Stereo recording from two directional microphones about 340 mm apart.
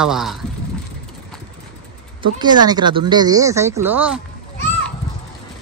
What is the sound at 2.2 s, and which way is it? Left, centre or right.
Speech, centre.